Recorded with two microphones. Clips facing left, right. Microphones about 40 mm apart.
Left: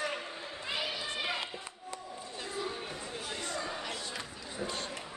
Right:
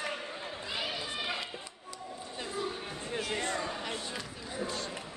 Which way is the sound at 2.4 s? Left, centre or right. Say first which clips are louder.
Right 1 dB; centre.